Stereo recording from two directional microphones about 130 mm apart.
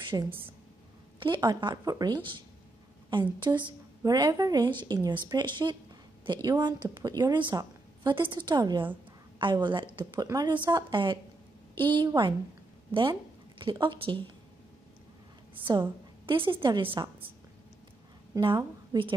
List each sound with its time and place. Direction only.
0.1 s a woman's voice: 20° right (ahead or behind)
1.2 s a woman's voice: 35° right (ahead or behind)
13.6 s a woman's voice: 40° right (ahead or behind)
15.6 s a woman's voice: 40° right (ahead or behind)
18.4 s a woman's voice: 40° right (ahead or behind)